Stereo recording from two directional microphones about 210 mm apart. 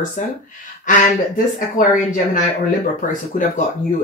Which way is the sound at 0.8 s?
40° left (ahead or behind).